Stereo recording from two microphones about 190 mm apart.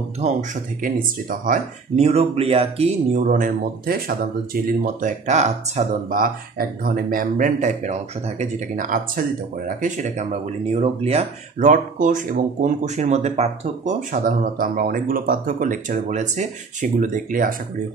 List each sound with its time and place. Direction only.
0.2 s speech: 45° right (ahead or behind)
3.3 s speech: 45° right (ahead or behind)
14.1 s speech: 50° right (ahead or behind)